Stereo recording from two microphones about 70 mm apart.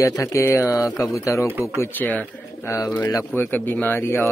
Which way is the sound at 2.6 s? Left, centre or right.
Left.